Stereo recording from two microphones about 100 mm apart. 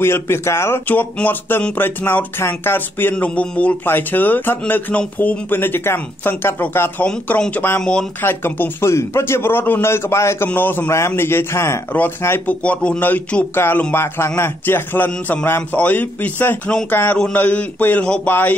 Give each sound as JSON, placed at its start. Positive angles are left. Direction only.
{"t": 0.0, "sound": "a man's voice", "side_deg": 25}